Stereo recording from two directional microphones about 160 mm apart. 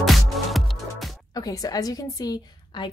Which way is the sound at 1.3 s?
25° left (ahead or behind).